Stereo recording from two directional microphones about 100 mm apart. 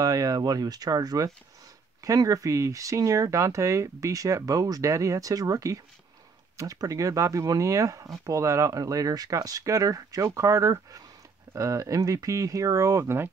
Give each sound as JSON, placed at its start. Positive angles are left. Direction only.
{"t": 0.0, "sound": "speech", "side_deg": -35}